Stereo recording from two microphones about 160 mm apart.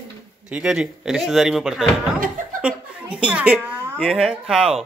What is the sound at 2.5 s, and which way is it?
Chuckle, 5° right (ahead or behind).